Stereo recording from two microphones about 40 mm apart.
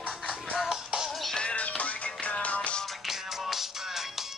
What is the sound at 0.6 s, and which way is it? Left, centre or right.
Music, centre.